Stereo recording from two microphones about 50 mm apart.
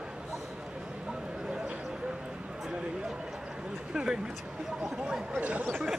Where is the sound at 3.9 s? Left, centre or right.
Centre.